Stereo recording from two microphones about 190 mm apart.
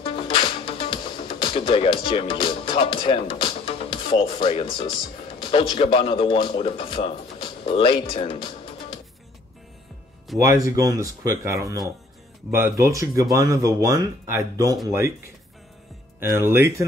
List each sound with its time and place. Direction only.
0.0 s music: 30° left (ahead or behind)
5.4 s speech: 25° left (ahead or behind)
10.4 s speech: 15° right (ahead or behind)